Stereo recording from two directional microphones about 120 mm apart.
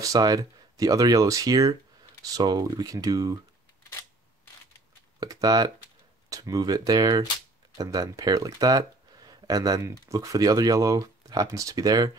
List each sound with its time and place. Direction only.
0.0 s speech: 30° right (ahead or behind)
5.2 s speech: 30° right (ahead or behind)